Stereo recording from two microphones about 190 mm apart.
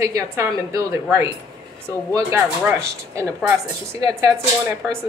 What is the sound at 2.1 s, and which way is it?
Speech, 15° right (ahead or behind).